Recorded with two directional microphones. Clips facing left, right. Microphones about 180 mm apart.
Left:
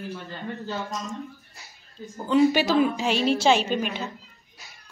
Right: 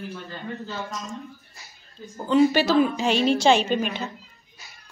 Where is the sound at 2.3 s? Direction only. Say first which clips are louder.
Right 1 dB; centre (ahead or behind).